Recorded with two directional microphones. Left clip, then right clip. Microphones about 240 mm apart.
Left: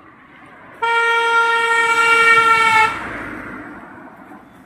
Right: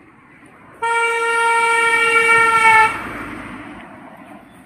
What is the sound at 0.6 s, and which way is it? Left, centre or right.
Train, left.